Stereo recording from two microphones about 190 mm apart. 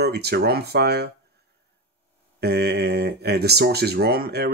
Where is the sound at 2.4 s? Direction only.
60° right (ahead or behind).